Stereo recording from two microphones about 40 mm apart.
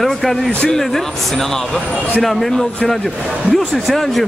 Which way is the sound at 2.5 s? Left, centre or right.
Centre.